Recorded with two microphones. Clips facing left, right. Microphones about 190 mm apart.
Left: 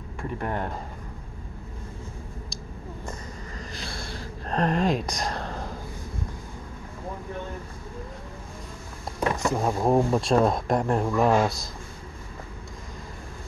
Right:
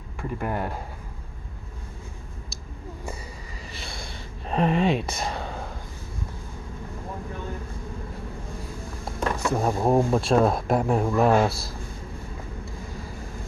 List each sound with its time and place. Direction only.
0.2 s speech: 5° right (ahead or behind)
4.5 s speech: 5° right (ahead or behind)
5.0 s a sound: 5° right (ahead or behind)
9.5 s speech: 5° right (ahead or behind)